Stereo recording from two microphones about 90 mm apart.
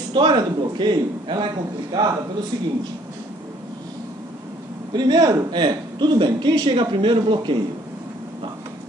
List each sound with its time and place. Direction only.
0.1 s speech: 60° right (ahead or behind)
4.9 s speech: 50° right (ahead or behind)